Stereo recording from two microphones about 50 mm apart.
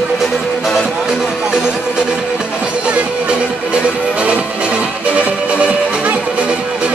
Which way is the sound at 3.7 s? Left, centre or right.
Right.